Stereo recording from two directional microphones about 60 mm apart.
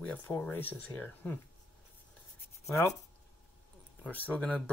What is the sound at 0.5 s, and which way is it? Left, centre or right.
Speech, left.